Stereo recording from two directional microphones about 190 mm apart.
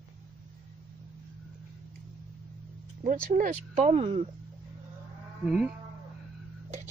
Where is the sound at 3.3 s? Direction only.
40° right (ahead or behind).